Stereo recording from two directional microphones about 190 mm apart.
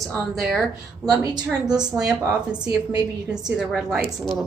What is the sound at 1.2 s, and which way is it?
Speech, 20° right (ahead or behind).